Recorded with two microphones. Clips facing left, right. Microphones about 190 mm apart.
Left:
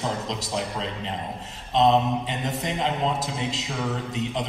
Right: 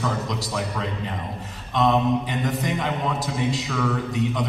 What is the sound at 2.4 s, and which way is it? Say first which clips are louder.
A man's voice: right 2 dB; 25° left (ahead or behind).